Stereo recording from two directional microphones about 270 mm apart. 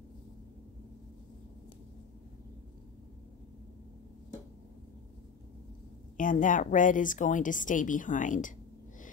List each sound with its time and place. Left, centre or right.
6.1 s a woman's voice: left